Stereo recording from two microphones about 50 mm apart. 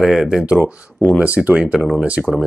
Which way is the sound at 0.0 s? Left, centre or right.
Centre.